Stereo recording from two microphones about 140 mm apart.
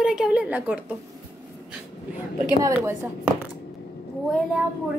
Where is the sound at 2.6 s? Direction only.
25° right (ahead or behind).